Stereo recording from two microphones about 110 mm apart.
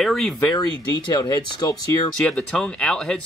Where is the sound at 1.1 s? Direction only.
40° left (ahead or behind).